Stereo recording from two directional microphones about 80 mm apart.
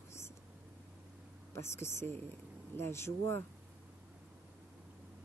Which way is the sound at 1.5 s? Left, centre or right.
Left.